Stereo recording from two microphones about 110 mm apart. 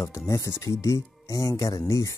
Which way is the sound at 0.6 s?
30° left (ahead or behind).